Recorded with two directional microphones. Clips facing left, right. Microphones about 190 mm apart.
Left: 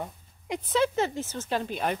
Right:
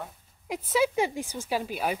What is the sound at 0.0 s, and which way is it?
A woman's voice, 5° right (ahead or behind).